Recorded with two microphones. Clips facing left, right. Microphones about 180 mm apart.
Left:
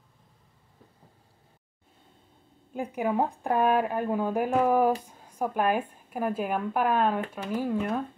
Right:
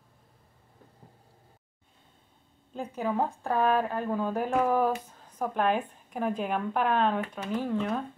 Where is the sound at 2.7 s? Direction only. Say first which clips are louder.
Left 3 dB; 10° left (ahead or behind).